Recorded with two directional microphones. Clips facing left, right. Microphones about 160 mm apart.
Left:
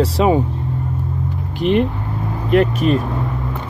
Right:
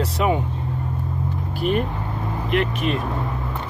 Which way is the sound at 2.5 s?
40° left (ahead or behind).